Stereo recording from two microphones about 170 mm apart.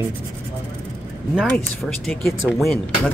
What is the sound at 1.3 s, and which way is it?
Speech, centre (ahead or behind).